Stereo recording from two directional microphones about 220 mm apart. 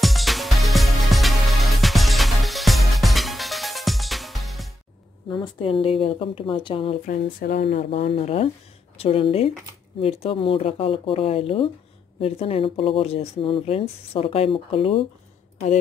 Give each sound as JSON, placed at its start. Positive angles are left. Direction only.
{"t": 0.0, "sound": "music", "side_deg": 0}
{"t": 5.3, "sound": "speech", "side_deg": 20}
{"t": 7.1, "sound": "speech", "side_deg": 40}
{"t": 7.9, "sound": "speech", "side_deg": 30}